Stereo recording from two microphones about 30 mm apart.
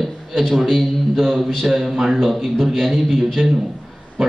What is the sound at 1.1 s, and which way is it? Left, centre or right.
A man's voice, centre.